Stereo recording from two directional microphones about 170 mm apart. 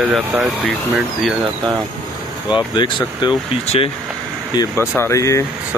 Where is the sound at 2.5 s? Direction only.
25° left (ahead or behind).